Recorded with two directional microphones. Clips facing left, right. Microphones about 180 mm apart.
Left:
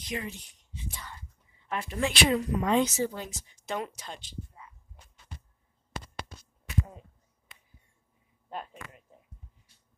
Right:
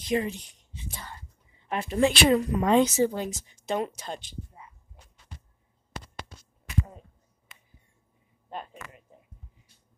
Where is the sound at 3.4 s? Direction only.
25° right (ahead or behind).